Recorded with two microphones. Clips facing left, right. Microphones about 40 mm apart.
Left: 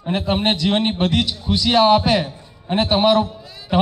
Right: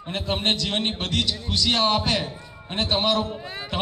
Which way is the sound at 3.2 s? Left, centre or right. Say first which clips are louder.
Right 4 dB; right.